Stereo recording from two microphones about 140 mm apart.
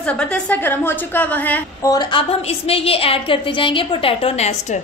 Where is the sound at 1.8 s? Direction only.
25° left (ahead or behind).